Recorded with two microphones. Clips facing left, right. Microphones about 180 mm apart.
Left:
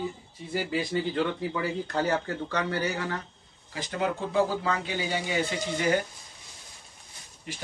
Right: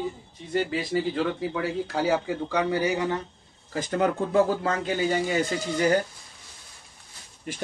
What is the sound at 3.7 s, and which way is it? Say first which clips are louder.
Speech: right 5 dB; 50° right (ahead or behind).